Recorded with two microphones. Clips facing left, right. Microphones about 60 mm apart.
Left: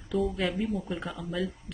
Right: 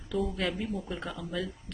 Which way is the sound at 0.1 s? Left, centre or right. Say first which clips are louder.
Left 2 dB; centre.